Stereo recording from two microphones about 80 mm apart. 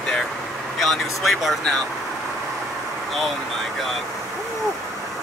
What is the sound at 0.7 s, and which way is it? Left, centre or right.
Speech, centre.